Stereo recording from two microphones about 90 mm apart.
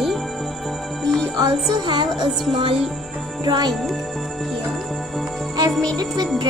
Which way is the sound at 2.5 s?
90° right.